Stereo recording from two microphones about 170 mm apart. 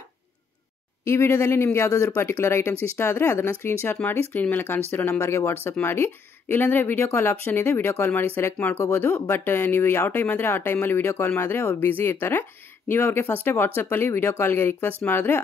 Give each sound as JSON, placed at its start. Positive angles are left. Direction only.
{"t": 1.0, "sound": "speech", "side_deg": 15}